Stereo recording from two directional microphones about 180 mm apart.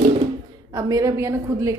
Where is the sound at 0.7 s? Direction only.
20° right (ahead or behind).